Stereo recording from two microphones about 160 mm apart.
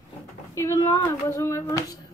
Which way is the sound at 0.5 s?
20° left (ahead or behind).